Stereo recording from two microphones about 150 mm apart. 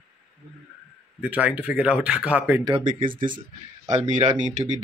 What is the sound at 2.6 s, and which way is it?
Speech, 30° right (ahead or behind).